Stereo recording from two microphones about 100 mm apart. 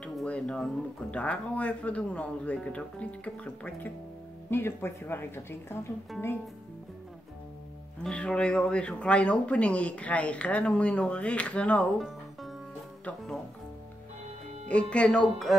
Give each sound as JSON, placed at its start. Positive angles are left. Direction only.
{"t": 0.0, "sound": "a woman's voice", "side_deg": 10}
{"t": 8.0, "sound": "speech", "side_deg": 10}
{"t": 12.0, "sound": "music", "side_deg": 0}
{"t": 14.7, "sound": "speech", "side_deg": 10}